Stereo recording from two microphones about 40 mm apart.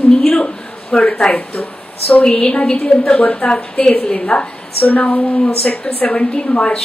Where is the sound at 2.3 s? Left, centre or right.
Left.